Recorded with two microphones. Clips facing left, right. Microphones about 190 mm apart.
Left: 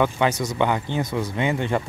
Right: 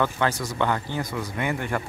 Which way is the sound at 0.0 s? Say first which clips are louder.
Left 3 dB; 20° left (ahead or behind).